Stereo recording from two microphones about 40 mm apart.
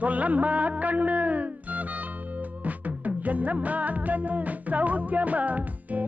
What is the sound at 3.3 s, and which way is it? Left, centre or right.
Music, right.